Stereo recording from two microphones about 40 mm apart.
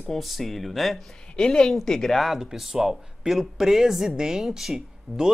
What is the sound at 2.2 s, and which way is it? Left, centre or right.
Speech, centre.